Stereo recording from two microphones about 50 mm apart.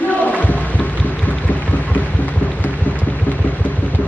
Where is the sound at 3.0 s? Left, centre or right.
Left.